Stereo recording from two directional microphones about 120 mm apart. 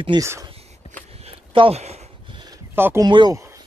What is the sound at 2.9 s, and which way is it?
Speech, 35° right (ahead or behind).